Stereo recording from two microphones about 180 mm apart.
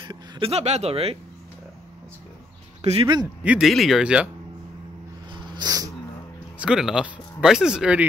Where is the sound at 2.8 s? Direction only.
35° right (ahead or behind).